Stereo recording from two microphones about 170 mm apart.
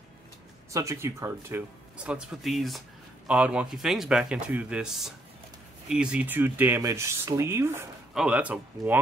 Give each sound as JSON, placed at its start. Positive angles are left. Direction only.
{"t": 0.7, "sound": "a man's voice", "side_deg": -20}